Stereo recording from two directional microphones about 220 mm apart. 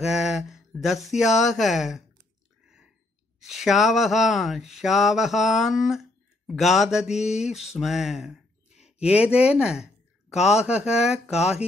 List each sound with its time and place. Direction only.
0.0 s mantra: centre (ahead or behind)
1.0 s speech: centre (ahead or behind)
3.3 s speech: centre (ahead or behind)
8.6 s a sound: 30° left (ahead or behind)
9.0 s speech: 5° right (ahead or behind)